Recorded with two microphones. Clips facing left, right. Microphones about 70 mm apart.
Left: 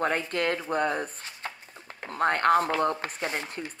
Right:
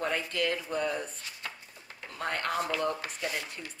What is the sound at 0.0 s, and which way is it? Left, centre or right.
Speech, left.